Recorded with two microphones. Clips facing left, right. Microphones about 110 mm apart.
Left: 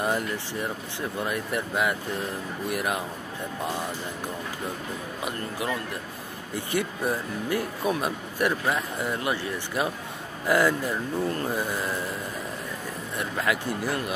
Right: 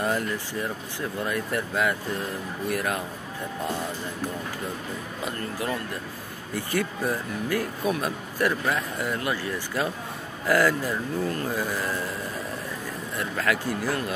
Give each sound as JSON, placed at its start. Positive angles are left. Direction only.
{"t": 1.2, "sound": "speech", "side_deg": 20}
{"t": 6.5, "sound": "speech", "side_deg": 20}
{"t": 13.2, "sound": "speech", "side_deg": 20}